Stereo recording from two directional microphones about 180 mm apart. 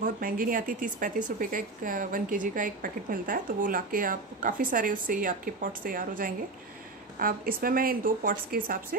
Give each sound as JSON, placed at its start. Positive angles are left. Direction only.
{"t": 0.0, "sound": "speech", "side_deg": -50}